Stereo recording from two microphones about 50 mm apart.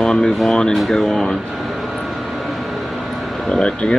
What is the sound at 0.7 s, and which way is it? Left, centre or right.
Speech, centre.